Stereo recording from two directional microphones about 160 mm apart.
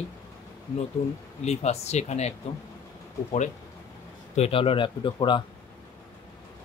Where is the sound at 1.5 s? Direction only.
40° left (ahead or behind).